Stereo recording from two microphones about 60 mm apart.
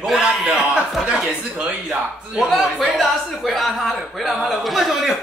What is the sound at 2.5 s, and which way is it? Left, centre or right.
A man's voice, centre.